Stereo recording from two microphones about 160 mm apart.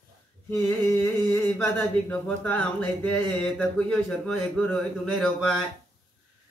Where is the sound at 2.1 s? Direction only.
10° left (ahead or behind).